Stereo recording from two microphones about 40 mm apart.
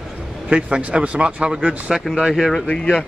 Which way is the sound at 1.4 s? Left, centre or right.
Centre.